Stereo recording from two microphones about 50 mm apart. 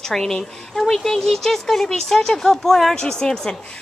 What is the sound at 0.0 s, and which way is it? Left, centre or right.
A woman's voice, centre.